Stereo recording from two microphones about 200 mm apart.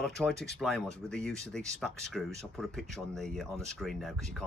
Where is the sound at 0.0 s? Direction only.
Centre (ahead or behind).